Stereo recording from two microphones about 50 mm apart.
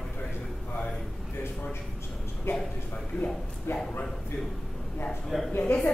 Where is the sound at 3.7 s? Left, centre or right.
Left.